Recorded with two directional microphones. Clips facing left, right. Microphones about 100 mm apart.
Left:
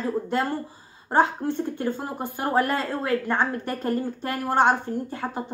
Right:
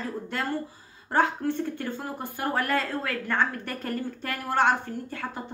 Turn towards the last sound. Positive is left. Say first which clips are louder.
# left 5 dB
turn(degrees=25)  # may be behind; listen again after turning